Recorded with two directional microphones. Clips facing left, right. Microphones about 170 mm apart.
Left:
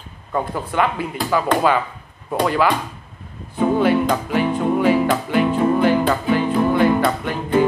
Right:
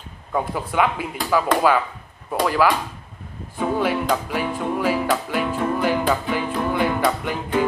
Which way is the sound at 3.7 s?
5° right (ahead or behind).